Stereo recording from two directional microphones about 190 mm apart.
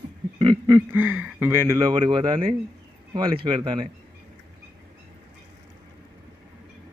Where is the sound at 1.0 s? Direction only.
10° right (ahead or behind).